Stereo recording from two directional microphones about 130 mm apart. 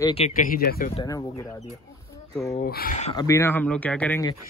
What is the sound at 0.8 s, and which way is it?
Speech, 90° left.